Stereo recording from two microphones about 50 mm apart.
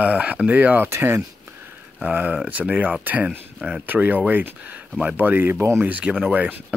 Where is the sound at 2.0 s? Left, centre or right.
Right.